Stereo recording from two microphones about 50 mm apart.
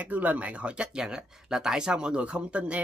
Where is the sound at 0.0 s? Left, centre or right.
Right.